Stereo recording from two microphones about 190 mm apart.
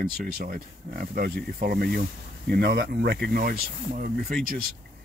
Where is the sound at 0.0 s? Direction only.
50° right (ahead or behind).